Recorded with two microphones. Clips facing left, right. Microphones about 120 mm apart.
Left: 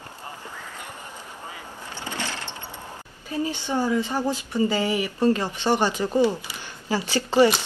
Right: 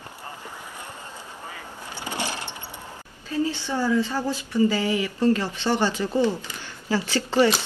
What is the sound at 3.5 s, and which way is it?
Speech, 15° left (ahead or behind).